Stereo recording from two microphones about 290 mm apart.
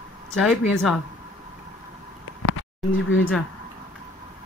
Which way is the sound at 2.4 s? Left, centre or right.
Left.